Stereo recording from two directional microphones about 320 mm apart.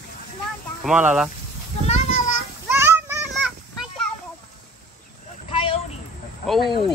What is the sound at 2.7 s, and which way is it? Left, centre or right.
Children playing, centre.